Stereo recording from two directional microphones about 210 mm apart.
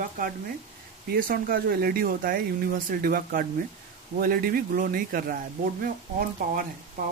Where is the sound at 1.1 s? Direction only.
45° right (ahead or behind).